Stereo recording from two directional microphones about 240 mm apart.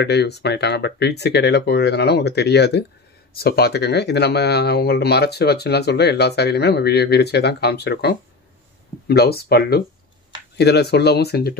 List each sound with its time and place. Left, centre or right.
0.0 s speech: left